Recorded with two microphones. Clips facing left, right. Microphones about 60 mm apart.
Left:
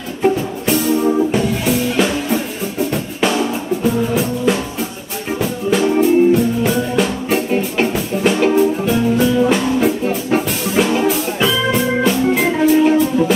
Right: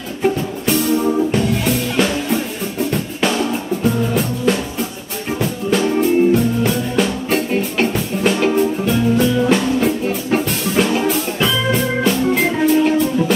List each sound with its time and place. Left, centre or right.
0.2 s music: centre